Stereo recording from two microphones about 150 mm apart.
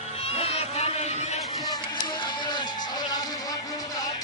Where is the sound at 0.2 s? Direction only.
40° left (ahead or behind).